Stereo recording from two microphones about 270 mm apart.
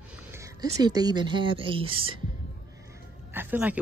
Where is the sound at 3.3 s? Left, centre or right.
Centre.